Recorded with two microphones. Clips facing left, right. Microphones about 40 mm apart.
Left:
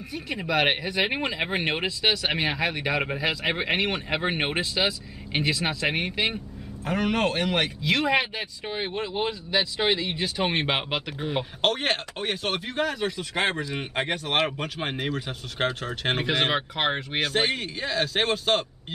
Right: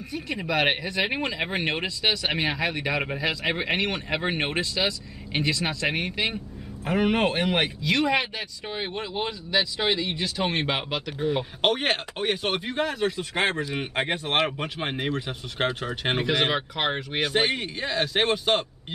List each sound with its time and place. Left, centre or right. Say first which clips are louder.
0.1 s speech: even; centre
6.8 s speech: right 2 dB; centre
7.8 s speech: left 2 dB; centre
11.6 s speech: right 1 dB; centre
16.3 s speech: even; centre
17.2 s speech: right 2 dB; centre